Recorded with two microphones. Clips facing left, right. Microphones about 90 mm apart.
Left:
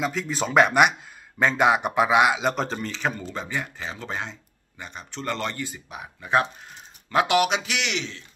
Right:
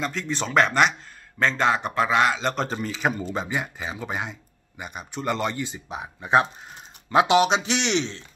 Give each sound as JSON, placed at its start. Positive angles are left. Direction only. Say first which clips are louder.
{"t": 0.0, "sound": "a man's voice", "louder": "left 1 dB", "side_deg": 5}